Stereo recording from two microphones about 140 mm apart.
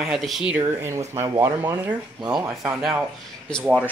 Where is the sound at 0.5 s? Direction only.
20° right (ahead or behind).